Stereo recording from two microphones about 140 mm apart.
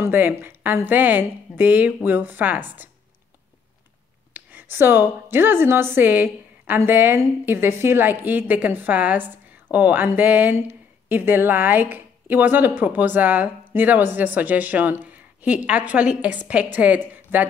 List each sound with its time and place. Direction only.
0.0 s a woman's voice: 15° right (ahead or behind)
4.3 s a woman's voice: 15° right (ahead or behind)